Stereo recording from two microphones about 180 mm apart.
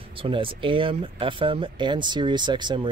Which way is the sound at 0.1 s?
30° right (ahead or behind).